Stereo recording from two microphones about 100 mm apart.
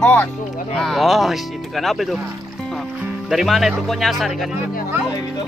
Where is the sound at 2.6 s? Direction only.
5° left (ahead or behind).